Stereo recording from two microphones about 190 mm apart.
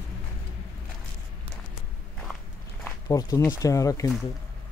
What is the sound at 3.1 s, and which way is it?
Speech, 20° left (ahead or behind).